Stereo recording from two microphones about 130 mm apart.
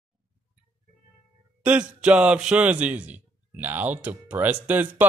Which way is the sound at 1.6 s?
10° right (ahead or behind).